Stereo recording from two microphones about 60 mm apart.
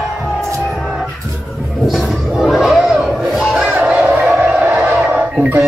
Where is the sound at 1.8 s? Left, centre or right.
Centre.